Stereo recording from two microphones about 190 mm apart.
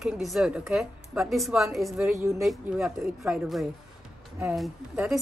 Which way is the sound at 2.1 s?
15° right (ahead or behind).